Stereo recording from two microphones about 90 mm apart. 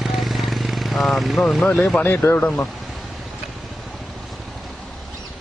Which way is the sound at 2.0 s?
20° left (ahead or behind).